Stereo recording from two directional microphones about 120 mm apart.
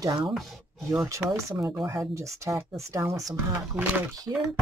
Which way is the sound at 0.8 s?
25° right (ahead or behind).